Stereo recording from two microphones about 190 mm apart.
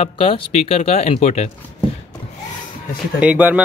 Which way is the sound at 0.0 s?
30° left (ahead or behind).